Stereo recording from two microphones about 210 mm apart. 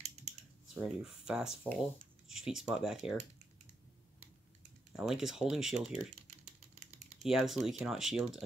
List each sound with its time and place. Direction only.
0.0 s typing: 30° right (ahead or behind)
0.7 s speech: 5° right (ahead or behind)
4.9 s speech: centre (ahead or behind)
7.2 s speech: centre (ahead or behind)